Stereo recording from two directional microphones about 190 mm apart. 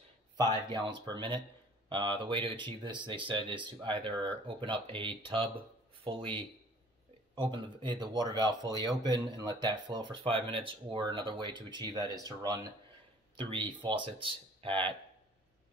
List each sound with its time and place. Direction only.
0.4 s speech: 25° right (ahead or behind)
7.5 s speech: 25° right (ahead or behind)